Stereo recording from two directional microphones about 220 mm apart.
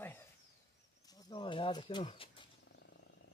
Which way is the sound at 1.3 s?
20° left (ahead or behind).